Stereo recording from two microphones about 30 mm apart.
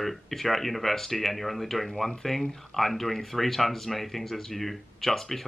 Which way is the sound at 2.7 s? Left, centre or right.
Centre.